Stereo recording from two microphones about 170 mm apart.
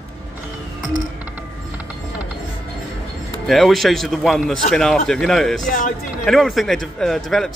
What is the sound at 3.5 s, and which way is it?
A man's voice, centre (ahead or behind).